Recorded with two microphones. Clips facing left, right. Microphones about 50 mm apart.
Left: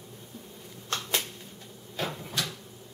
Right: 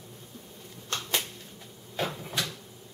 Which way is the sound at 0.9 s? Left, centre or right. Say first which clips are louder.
Even; centre.